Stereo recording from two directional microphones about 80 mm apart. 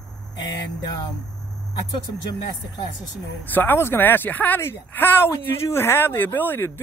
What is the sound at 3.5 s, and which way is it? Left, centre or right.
Speech, left.